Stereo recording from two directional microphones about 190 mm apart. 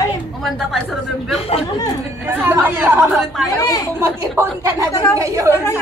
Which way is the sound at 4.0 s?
15° right (ahead or behind).